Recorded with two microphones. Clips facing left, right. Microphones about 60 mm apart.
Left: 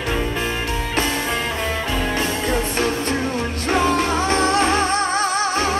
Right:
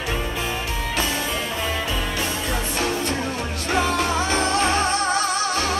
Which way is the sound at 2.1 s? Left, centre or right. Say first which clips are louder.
Left 4 dB; left.